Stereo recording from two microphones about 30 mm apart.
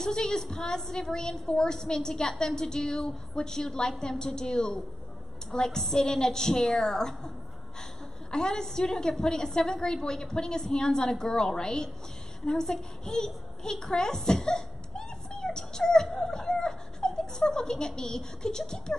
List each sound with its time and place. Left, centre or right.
0.0 s a woman's voice: left
8.3 s a woman's voice: centre